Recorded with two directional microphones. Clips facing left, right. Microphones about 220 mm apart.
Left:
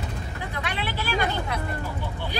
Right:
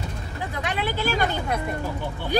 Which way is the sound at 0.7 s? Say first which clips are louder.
Right 3 dB; 45° right (ahead or behind).